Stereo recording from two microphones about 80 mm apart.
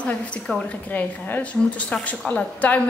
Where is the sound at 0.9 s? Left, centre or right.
Left.